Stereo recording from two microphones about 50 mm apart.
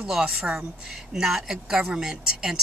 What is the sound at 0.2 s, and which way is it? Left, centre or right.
Speech, centre.